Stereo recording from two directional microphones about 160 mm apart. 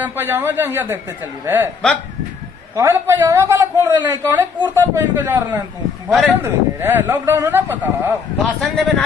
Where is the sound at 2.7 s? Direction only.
15° right (ahead or behind).